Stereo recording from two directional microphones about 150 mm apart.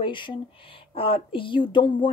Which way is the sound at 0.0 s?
35° left (ahead or behind).